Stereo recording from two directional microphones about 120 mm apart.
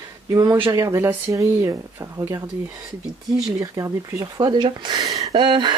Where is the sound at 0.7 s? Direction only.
25° right (ahead or behind).